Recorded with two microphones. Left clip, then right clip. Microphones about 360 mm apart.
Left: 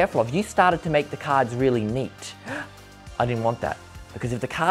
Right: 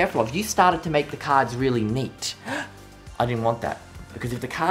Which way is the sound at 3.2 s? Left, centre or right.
Left.